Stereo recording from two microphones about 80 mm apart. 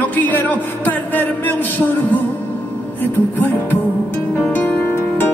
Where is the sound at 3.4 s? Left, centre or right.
Left.